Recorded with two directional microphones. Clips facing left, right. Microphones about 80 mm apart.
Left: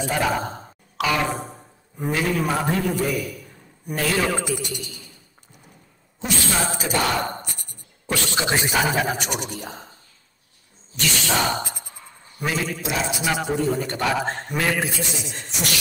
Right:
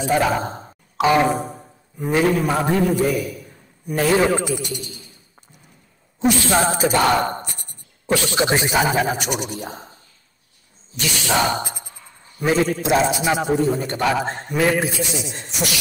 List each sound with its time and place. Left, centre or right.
0.0 s speech: right
1.3 s a man's voice: centre
3.1 s a man's voice: right
6.5 s a sound: right
8.1 s speech: centre
11.0 s a man's voice: right
12.4 s a sound: right
13.2 s a man's voice: right